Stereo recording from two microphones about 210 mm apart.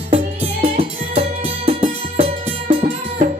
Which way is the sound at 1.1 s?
25° right (ahead or behind).